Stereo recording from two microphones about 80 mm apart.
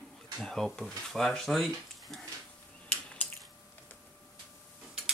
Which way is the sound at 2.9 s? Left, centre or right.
Centre.